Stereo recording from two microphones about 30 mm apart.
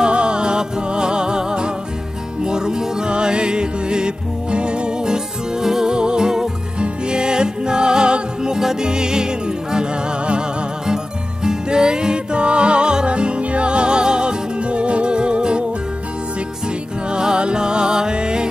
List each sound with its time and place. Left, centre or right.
0.0 s music: right
11.4 s music: right
16.6 s music: right